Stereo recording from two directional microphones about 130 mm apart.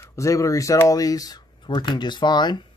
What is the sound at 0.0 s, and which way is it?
Speech, 25° left (ahead or behind).